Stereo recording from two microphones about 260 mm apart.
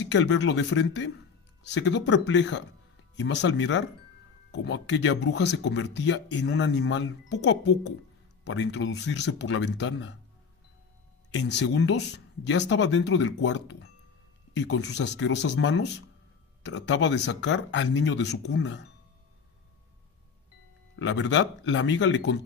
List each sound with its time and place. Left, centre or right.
0.1 s speech: left
11.3 s speech: left
20.9 s speech: left